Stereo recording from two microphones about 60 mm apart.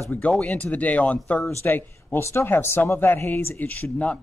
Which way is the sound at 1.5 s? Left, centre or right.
Left.